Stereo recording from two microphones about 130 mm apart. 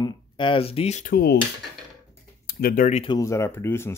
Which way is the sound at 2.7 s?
70° left (ahead or behind).